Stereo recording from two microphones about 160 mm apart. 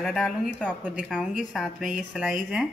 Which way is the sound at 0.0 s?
5° left (ahead or behind).